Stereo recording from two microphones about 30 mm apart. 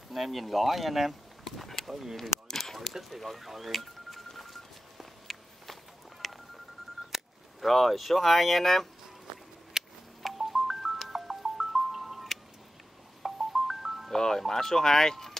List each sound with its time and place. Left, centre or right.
0.1 s speech: centre
1.4 s a sound: centre
2.9 s speech: centre
4.4 s telephone dialing: centre
6.2 s telephone: centre
7.6 s speech: centre
9.8 s telephone dialing: centre
10.2 s music: centre
14.1 s music: centre
14.4 s speech: centre